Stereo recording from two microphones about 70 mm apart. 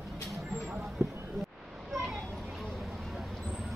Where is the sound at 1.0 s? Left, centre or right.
Right.